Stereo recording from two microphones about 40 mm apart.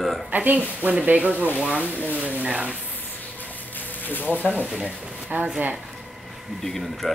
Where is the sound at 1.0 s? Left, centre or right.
Right.